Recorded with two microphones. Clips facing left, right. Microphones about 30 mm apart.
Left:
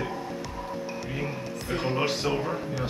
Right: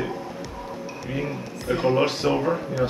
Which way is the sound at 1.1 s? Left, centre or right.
Centre.